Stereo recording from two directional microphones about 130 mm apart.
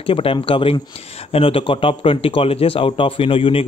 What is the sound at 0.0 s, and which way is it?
A man's voice, 45° left (ahead or behind).